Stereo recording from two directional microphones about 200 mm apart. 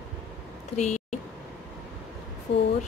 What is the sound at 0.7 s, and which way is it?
Speech, 35° left (ahead or behind).